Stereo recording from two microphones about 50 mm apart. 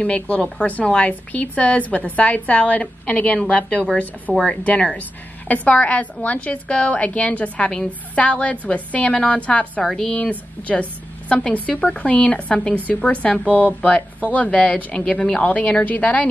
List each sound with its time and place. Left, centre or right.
0.0 s a woman's voice: left
4.3 s speech: centre
5.5 s a woman's voice: left